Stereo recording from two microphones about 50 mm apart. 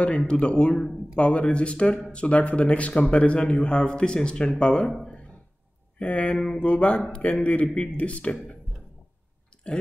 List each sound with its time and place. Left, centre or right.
0.2 s speech: left
5.9 s speech: left